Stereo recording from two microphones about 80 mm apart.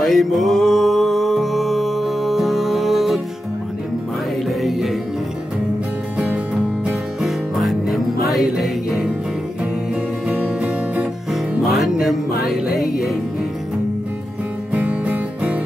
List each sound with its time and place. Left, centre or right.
0.0 s music: centre
4.5 s music: centre
6.1 s music: centre
10.2 s music: centre
11.6 s music: centre
14.7 s music: right